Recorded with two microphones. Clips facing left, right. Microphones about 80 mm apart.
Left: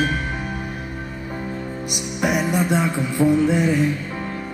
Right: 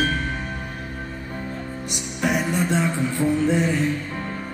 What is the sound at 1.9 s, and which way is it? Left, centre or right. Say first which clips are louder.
Music: left 2 dB; centre.